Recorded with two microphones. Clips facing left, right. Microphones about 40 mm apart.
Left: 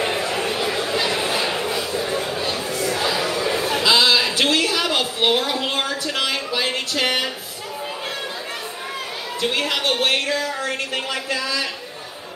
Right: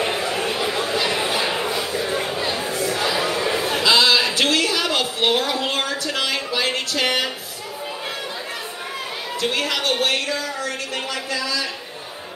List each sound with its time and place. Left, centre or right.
0.6 s a sound: centre
2.4 s chatter: right
3.0 s chatter: centre
3.8 s a sound: centre
9.4 s a woman's voice: centre
9.9 s music: left